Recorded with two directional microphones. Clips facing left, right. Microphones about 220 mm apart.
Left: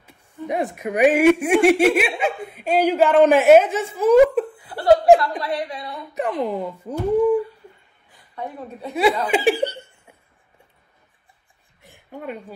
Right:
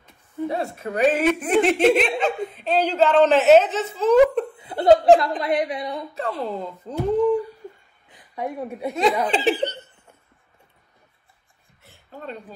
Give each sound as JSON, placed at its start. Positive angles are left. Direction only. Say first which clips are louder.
{"t": 0.5, "sound": "speech", "louder": "left 5 dB", "side_deg": 15}
{"t": 4.6, "sound": "laughter", "louder": "right 2 dB", "side_deg": -20}
{"t": 5.1, "sound": "a woman's voice", "louder": "even", "side_deg": -20}
{"t": 6.1, "sound": "speech", "louder": "left 7 dB", "side_deg": 15}
{"t": 8.1, "sound": "a woman's voice", "louder": "right 3 dB", "side_deg": -15}
{"t": 9.2, "sound": "speech", "louder": "left 2 dB", "side_deg": 10}
{"t": 11.8, "sound": "a sound", "louder": "left 4 dB", "side_deg": 15}